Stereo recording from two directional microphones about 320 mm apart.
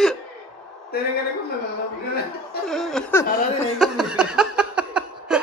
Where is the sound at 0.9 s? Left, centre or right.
Left.